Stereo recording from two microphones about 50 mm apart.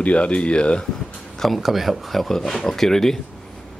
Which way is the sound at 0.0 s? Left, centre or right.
Left.